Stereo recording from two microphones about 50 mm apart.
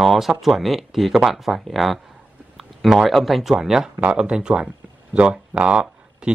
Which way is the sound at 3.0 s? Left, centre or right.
Centre.